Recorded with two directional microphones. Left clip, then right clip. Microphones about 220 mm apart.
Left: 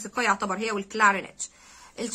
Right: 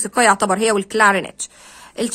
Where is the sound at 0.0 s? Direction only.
50° right (ahead or behind).